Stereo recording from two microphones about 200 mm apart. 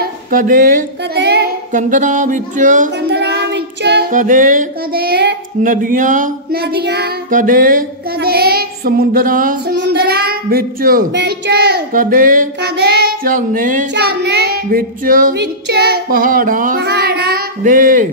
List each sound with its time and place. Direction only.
0.3 s speech: 45° right (ahead or behind)
1.7 s a sound: 40° right (ahead or behind)
3.1 s child singing: 55° right (ahead or behind)
4.1 s child singing: 40° right (ahead or behind)